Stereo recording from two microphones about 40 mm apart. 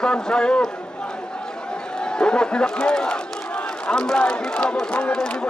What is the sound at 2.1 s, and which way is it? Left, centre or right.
A man's voice, left.